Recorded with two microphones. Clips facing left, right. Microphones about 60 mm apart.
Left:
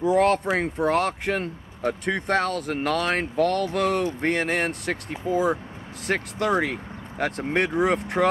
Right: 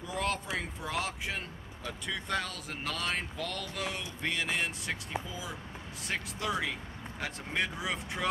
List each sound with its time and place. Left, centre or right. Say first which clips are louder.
0.0 s speech: left 14 dB; left